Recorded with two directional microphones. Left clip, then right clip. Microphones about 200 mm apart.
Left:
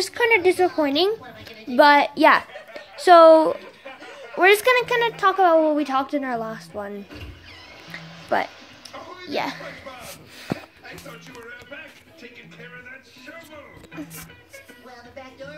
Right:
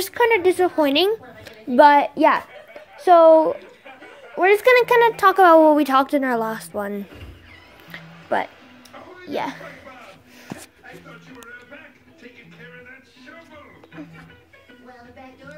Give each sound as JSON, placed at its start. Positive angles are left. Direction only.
{"t": 0.0, "sound": "a woman's voice", "side_deg": -30}
{"t": 4.6, "sound": "speech", "side_deg": -20}
{"t": 7.9, "sound": "music", "side_deg": -10}
{"t": 9.3, "sound": "speech", "side_deg": -15}